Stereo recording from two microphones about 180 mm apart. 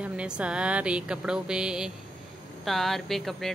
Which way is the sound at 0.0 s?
5° right (ahead or behind).